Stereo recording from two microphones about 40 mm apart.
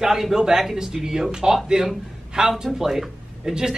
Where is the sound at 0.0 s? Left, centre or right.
Centre.